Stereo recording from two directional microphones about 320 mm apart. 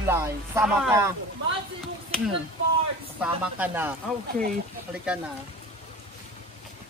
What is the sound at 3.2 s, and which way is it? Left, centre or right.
Speech, centre.